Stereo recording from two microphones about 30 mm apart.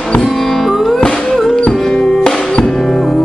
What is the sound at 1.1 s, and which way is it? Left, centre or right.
Music, left.